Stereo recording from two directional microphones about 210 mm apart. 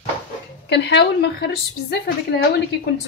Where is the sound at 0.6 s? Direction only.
55° left (ahead or behind).